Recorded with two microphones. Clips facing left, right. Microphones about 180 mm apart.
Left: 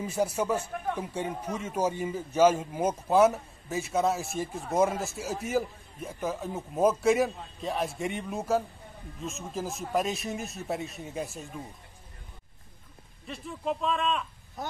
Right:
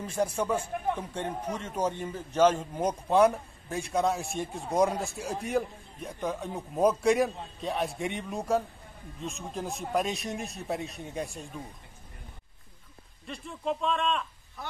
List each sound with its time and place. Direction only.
0.0 s a man's voice: 10° left (ahead or behind)
13.3 s a man's voice: centre (ahead or behind)
14.6 s speech: 45° left (ahead or behind)